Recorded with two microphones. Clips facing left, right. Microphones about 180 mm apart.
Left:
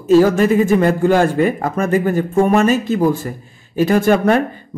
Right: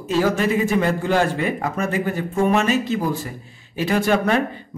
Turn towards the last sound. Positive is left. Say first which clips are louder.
# left 6 dB
turn(degrees=45)  # may be behind; listen again after turning